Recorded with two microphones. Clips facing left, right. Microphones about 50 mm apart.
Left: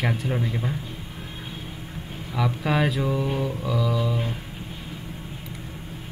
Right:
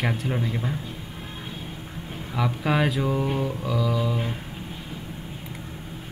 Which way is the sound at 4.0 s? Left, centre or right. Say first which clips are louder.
Even; centre.